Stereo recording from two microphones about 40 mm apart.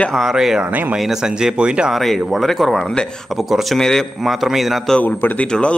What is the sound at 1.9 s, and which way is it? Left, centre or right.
Speech, centre.